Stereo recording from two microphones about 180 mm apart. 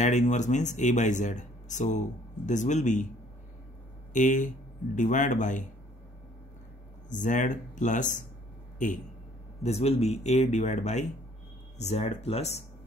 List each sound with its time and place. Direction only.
0.0 s speech: 40° left (ahead or behind)
4.1 s speech: 45° left (ahead or behind)
7.1 s a man's voice: 45° left (ahead or behind)